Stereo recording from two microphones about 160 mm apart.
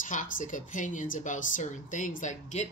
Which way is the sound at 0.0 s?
55° left (ahead or behind).